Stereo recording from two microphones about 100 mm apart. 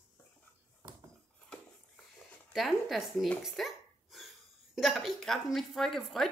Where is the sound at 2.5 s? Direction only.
Centre (ahead or behind).